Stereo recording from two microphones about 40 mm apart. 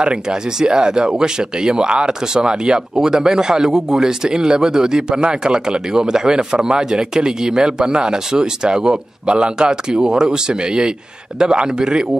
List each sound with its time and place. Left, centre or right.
0.0 s speech: right